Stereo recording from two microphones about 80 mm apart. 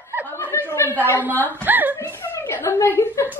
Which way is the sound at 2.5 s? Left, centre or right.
Left.